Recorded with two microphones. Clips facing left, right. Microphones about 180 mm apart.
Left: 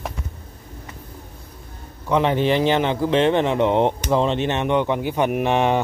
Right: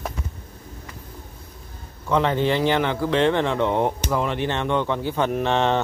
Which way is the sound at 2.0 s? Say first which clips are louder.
Left 2 dB; 15° left (ahead or behind).